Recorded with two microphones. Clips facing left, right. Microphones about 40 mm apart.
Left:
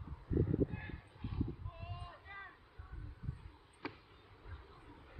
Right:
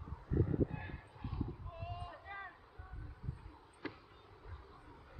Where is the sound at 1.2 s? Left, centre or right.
Centre.